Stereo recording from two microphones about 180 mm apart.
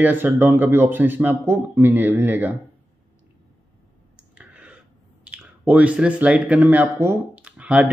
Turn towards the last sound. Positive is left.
turn(degrees=-5)  # may be behind; listen again after turning